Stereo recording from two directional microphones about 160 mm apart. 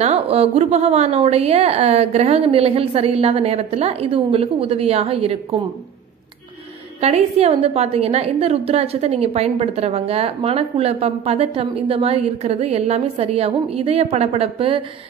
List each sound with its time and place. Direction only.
0.0 s a woman's voice: 40° right (ahead or behind)
7.0 s a woman's voice: 40° right (ahead or behind)